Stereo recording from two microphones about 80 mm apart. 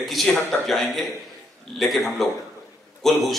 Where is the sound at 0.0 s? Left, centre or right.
Centre.